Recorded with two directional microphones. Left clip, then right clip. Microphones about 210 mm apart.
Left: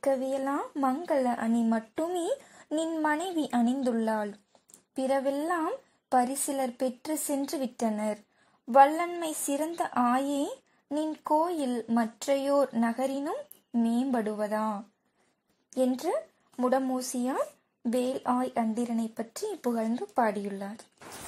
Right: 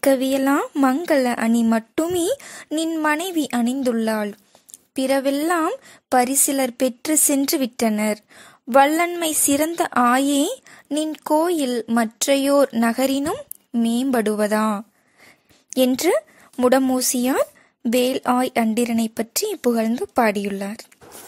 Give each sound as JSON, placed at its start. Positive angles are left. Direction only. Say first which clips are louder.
{"t": 0.0, "sound": "speech", "louder": "right 10 dB", "side_deg": -45}
{"t": 1.1, "sound": "speech", "louder": "right 7 dB", "side_deg": -55}
{"t": 1.4, "sound": "speech", "louder": "right 9 dB", "side_deg": -30}